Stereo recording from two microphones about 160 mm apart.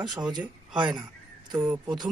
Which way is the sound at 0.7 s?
30° right (ahead or behind).